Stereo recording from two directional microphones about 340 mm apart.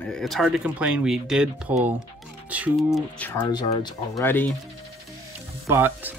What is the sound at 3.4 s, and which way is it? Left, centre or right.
Speech, centre.